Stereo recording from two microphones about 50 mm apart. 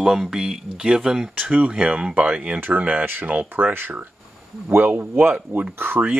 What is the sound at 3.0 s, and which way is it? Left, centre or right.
Speech, right.